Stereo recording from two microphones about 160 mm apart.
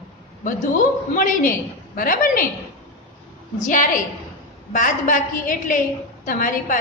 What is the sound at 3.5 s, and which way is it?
A woman's voice, 55° left (ahead or behind).